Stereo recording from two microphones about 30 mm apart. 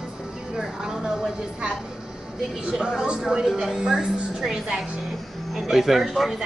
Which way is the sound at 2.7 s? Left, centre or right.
Right.